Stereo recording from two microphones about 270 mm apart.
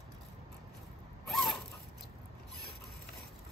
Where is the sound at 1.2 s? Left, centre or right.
Centre.